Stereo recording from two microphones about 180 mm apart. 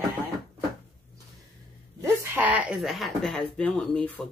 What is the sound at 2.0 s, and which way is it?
Speech, 15° right (ahead or behind).